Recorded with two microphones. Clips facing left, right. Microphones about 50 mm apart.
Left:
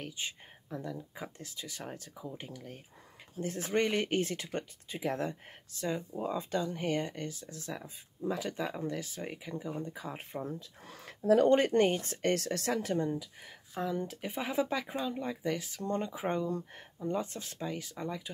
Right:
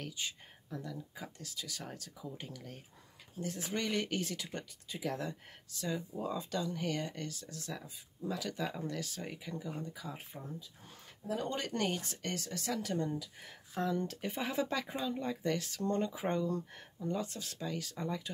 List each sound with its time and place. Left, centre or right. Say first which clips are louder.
0.0 s speech: left 2 dB; left
3.3 s speech: left 7 dB; left; by 9.8 s centre
9.8 s speech: left 4 dB; left
10.3 s speech: left 7 dB; left
11.4 s speech: left 11 dB; left
12.4 s speech: left 6 dB; left
12.9 s speech: left 4 dB; centre
17.9 s speech: even; centre